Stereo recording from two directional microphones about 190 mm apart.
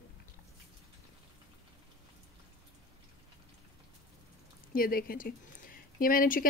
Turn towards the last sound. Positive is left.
turn(degrees=45)  # may be behind; listen again after turning